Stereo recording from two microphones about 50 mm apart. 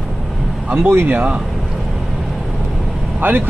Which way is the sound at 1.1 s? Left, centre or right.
Right.